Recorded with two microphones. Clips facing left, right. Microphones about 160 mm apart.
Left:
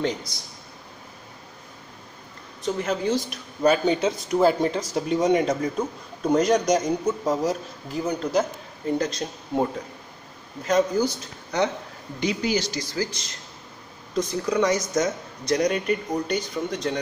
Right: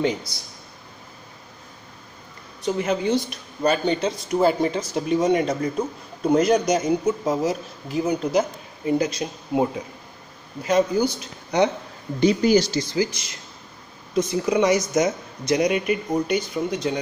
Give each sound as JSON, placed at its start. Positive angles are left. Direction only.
{"t": 0.0, "sound": "speech", "side_deg": -5}
{"t": 2.6, "sound": "speech", "side_deg": 0}
{"t": 12.2, "sound": "speech", "side_deg": -40}
{"t": 12.8, "sound": "speech", "side_deg": -15}